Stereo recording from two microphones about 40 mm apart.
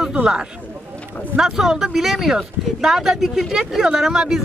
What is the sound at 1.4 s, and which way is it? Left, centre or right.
Speech, centre.